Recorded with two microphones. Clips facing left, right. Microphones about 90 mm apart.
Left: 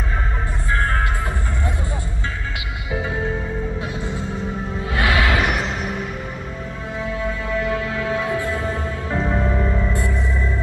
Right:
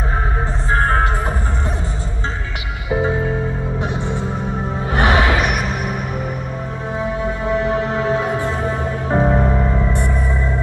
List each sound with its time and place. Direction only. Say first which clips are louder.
0.7 s music: right 5 dB; 35° right (ahead or behind)
2.9 s music: right 7 dB; 30° right (ahead or behind)
4.9 s music: right 4 dB; 25° right (ahead or behind)
7.0 s music: right 3 dB; 25° right (ahead or behind)
9.6 s music: right 3 dB; 20° right (ahead or behind)